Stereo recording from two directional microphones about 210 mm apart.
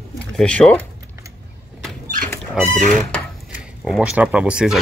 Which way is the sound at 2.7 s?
35° right (ahead or behind).